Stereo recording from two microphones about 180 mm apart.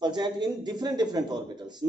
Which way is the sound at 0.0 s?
25° right (ahead or behind).